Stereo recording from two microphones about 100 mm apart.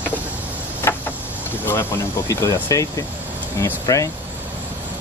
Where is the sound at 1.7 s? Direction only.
25° left (ahead or behind).